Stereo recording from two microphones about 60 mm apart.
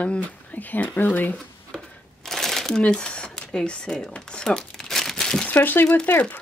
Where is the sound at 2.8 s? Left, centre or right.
Centre.